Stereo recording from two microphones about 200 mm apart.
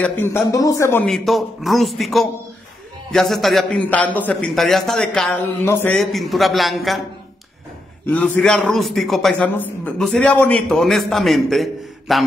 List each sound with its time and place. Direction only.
0.0 s a man's voice: 10° left (ahead or behind)
1.0 s a man's voice: centre (ahead or behind)
5.9 s a man's voice: centre (ahead or behind)
8.1 s a man's voice: 5° left (ahead or behind)